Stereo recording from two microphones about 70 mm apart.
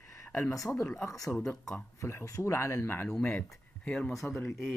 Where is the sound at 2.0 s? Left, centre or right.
Left.